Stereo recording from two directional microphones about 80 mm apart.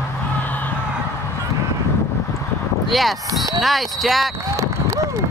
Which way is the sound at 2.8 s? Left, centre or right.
Centre.